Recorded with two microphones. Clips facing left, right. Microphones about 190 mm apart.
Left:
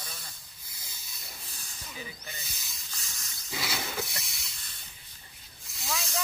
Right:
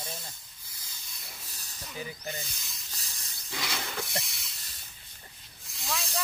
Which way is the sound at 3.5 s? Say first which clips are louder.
Left 1 dB; 5° left (ahead or behind).